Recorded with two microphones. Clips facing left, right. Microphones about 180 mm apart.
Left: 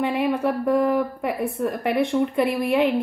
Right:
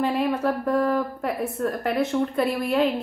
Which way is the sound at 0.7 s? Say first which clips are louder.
Left 2 dB; 10° left (ahead or behind).